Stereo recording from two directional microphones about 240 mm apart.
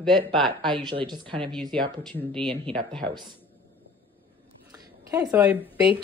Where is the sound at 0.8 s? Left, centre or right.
Centre.